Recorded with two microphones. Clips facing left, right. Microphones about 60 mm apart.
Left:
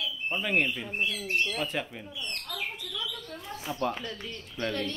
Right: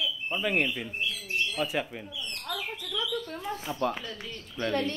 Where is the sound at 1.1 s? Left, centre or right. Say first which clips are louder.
Left 2 dB; left.